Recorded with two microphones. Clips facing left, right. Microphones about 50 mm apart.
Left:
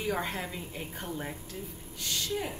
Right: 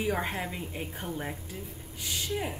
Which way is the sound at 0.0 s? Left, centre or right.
Centre.